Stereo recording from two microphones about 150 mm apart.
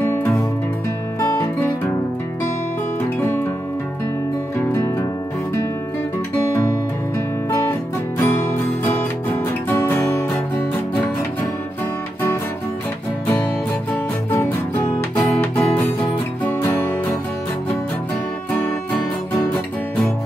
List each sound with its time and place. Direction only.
1.2 s music: 20° left (ahead or behind)
4.7 s music: 20° left (ahead or behind)
8.2 s music: 15° left (ahead or behind)
15.6 s music: 10° left (ahead or behind)